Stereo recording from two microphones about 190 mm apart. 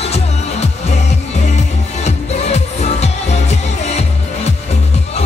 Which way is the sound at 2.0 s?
35° left (ahead or behind).